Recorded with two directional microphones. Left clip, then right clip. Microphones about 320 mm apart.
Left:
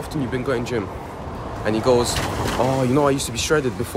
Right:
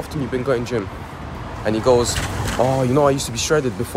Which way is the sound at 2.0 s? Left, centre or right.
Left.